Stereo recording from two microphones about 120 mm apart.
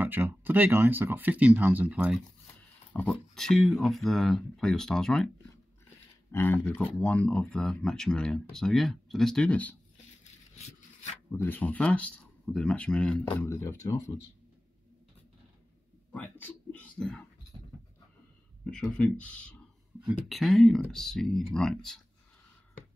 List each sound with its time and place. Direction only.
0.0 s speech: 15° right (ahead or behind)
2.9 s speech: 10° left (ahead or behind)
6.3 s speech: 15° left (ahead or behind)
11.3 s speech: 15° left (ahead or behind)
13.4 s speech: 20° left (ahead or behind)
16.1 s speech: 15° left (ahead or behind)
18.7 s speech: 10° left (ahead or behind)
20.1 s speech: centre (ahead or behind)